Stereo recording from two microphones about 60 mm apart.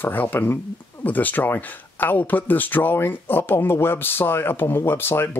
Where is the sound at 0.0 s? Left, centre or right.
Left.